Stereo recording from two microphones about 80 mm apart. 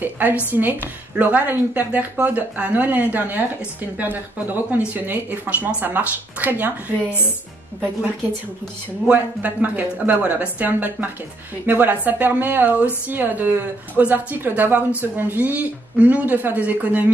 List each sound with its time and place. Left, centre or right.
0.0 s a woman's voice: right
9.0 s a woman's voice: centre